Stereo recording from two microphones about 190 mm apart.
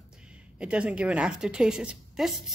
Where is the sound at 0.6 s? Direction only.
5° right (ahead or behind).